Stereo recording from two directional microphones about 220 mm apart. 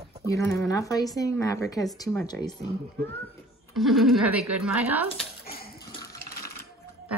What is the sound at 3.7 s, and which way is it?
Speech, centre (ahead or behind).